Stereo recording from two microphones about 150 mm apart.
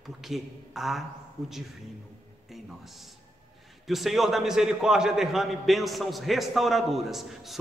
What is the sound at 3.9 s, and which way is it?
A man's voice, centre (ahead or behind).